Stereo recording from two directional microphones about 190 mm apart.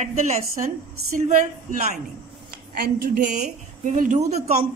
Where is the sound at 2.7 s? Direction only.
50° right (ahead or behind).